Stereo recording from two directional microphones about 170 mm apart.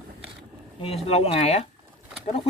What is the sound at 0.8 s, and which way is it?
Speech, 35° left (ahead or behind).